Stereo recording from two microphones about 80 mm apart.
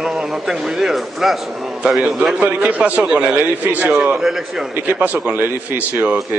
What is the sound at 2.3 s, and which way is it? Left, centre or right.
A man's voice, centre.